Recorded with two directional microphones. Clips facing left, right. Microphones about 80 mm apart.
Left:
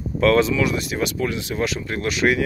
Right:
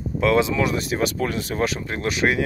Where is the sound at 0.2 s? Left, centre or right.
Centre.